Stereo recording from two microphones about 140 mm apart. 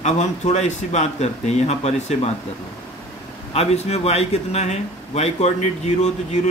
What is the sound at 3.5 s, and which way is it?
A man's voice, 50° left (ahead or behind).